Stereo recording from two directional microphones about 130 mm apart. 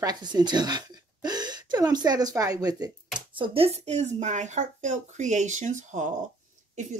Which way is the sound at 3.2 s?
40° right (ahead or behind).